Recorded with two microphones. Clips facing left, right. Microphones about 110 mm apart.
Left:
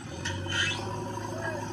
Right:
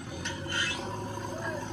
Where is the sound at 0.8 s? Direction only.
10° right (ahead or behind).